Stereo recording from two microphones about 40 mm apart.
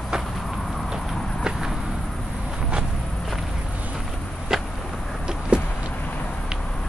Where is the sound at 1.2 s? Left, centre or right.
Centre.